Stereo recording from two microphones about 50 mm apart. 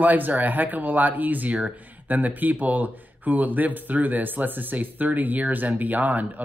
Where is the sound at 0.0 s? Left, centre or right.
Right.